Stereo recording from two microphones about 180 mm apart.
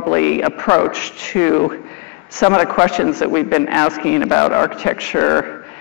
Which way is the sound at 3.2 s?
10° left (ahead or behind).